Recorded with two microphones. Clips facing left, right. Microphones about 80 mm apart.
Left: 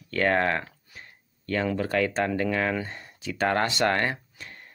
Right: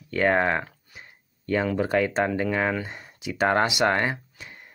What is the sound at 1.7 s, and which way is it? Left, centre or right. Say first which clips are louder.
Speech: right 2 dB; centre.